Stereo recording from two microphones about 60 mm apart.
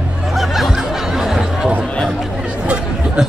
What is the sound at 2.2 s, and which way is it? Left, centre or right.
Speech, centre.